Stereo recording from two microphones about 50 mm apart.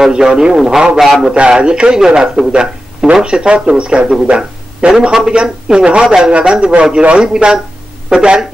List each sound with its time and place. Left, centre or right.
0.1 s a man's voice: centre
1.0 s a man's voice: centre
1.3 s a man's voice: right